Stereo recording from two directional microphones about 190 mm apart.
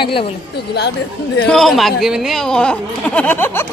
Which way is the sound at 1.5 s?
Centre (ahead or behind).